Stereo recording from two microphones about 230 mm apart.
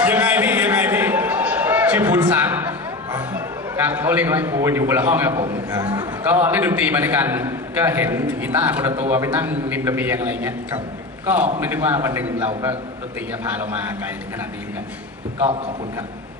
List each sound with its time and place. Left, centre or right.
0.0 s a man's voice: centre
15.3 s a man's voice: right